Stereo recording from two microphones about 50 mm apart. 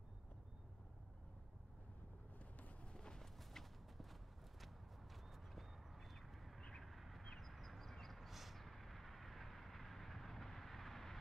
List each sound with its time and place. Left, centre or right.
2.3 s a sound: left; by 4.6 s centre
5.1 s horse: centre
6.6 s vehicle: centre